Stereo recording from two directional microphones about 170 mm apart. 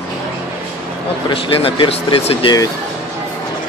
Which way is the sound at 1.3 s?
30° left (ahead or behind).